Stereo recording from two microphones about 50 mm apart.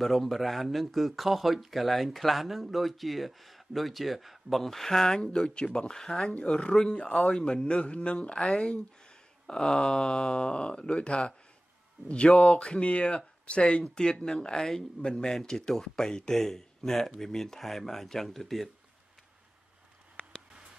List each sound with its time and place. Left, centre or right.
0.0 s speech: centre
7.0 s speech: left
8.5 s speech: centre
12.4 s speech: left; by 18.7 s centre